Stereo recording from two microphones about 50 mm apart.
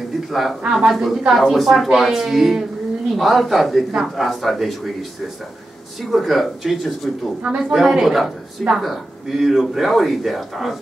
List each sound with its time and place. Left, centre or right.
0.3 s a man's voice: centre
6.0 s a man's voice: centre